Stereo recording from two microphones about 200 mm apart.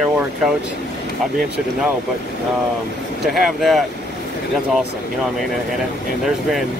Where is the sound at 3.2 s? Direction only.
Centre (ahead or behind).